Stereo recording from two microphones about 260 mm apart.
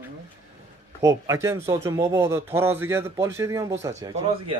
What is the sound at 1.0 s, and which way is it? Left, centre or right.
Speech, centre.